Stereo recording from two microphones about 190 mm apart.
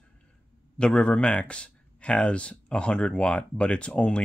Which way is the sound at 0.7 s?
5° left (ahead or behind).